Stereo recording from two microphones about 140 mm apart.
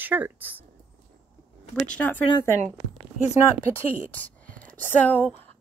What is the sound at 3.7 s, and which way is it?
A woman's voice, 10° left (ahead or behind).